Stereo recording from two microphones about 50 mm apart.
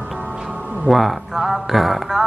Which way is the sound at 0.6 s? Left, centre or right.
Centre.